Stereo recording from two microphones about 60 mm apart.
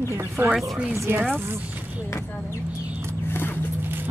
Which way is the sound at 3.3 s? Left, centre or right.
Left.